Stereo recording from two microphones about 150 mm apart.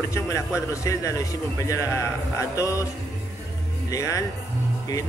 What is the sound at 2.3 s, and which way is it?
Speech, 20° left (ahead or behind).